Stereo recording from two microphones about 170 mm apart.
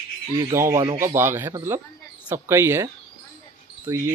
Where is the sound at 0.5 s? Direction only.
15° right (ahead or behind).